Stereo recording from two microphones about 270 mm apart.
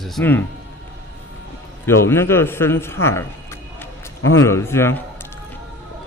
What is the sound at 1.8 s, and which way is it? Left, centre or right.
A man's voice, centre.